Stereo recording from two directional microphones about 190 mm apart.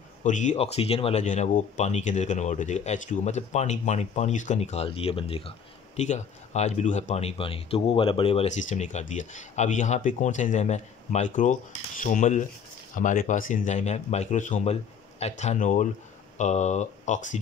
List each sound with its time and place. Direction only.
0.2 s speech: 40° left (ahead or behind)